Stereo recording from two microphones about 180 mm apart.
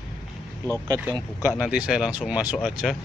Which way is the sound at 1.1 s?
5° right (ahead or behind).